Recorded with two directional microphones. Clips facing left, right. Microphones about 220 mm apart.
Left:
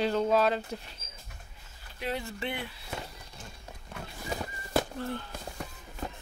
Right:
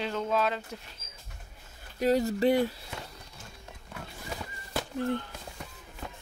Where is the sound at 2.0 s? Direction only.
40° right (ahead or behind).